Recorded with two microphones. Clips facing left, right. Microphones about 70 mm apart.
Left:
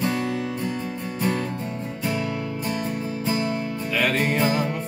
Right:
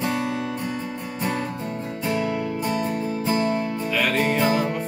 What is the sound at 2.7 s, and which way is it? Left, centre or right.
Music, right.